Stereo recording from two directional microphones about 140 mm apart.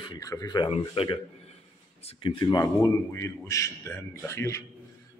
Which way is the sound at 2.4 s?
25° left (ahead or behind).